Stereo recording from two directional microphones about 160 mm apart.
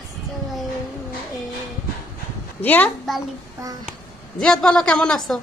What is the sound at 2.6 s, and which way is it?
Speech, 10° left (ahead or behind).